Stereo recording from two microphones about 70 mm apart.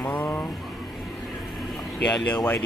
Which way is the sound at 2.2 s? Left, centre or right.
Left.